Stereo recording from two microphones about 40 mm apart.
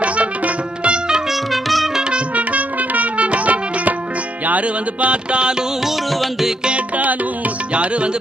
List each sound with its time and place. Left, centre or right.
0.8 s music: right
1.5 s music: centre
2.0 s music: right
2.3 s music: right
7.7 s music: right